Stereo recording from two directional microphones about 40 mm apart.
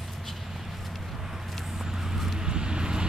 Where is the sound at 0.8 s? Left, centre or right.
Centre.